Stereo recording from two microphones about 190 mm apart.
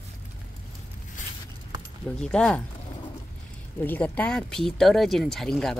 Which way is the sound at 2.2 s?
5° left (ahead or behind).